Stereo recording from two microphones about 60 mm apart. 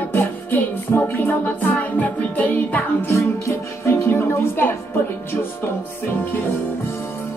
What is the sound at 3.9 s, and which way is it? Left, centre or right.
Music, left.